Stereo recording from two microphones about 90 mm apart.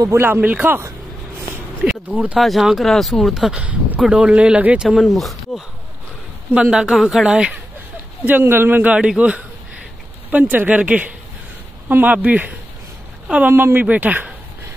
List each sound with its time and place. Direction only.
0.2 s a woman's voice: 20° right (ahead or behind)
2.0 s speech: 15° right (ahead or behind)
2.3 s speech: centre (ahead or behind)
4.8 s speech: centre (ahead or behind)
6.5 s speech: 10° right (ahead or behind)
8.3 s a woman's voice: 25° right (ahead or behind)